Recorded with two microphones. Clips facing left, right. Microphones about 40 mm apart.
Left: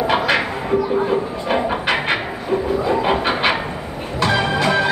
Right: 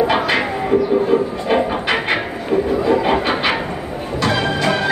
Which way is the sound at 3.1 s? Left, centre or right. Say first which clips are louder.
Right 1 dB; centre.